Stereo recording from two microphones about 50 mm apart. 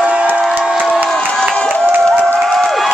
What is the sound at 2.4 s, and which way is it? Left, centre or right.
Crowd, centre.